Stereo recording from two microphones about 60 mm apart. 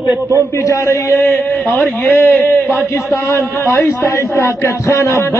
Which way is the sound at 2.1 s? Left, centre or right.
Left.